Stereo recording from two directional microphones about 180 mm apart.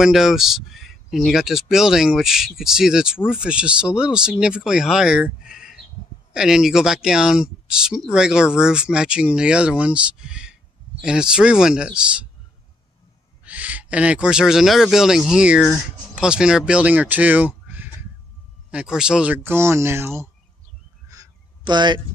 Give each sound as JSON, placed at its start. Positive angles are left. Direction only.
{"t": 0.0, "sound": "speech", "side_deg": 0}
{"t": 13.4, "sound": "speech", "side_deg": -10}
{"t": 21.1, "sound": "a sound", "side_deg": -20}